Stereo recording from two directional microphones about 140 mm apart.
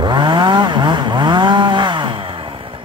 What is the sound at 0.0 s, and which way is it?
Chainsaw, 35° right (ahead or behind).